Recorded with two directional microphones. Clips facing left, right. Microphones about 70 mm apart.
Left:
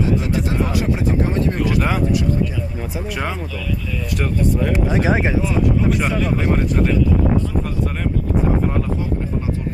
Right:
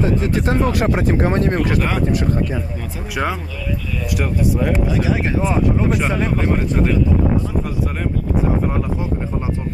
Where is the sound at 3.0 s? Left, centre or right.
Centre.